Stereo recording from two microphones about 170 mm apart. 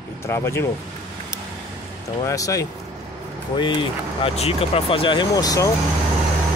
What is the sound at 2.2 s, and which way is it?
Speech, 20° left (ahead or behind).